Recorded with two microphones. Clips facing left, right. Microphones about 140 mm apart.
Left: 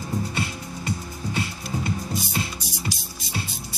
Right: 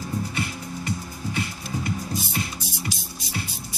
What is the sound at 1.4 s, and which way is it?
Music, 25° left (ahead or behind).